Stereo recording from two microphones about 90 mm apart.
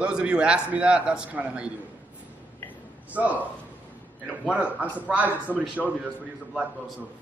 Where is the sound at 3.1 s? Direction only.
15° right (ahead or behind).